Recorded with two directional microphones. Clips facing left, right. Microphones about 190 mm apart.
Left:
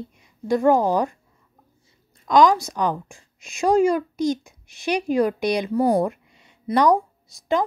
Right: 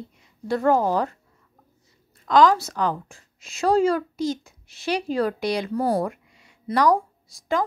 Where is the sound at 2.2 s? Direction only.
15° left (ahead or behind).